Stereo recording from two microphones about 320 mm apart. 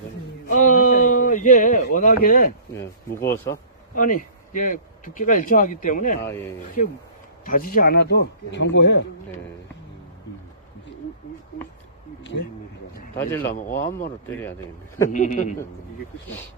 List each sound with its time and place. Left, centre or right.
0.5 s a sound: left
2.7 s speech: centre
3.9 s speech: left
13.1 s speech: centre
13.5 s speech: left
15.1 s speech: left